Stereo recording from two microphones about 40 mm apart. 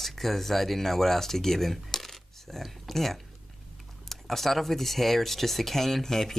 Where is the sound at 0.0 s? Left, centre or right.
Centre.